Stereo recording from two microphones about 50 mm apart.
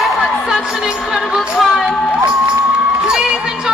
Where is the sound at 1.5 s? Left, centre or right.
Centre.